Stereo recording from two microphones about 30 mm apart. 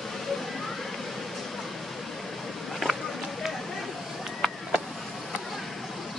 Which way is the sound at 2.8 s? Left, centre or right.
Centre.